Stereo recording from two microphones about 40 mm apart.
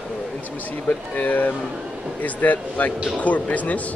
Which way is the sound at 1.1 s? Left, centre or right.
Left.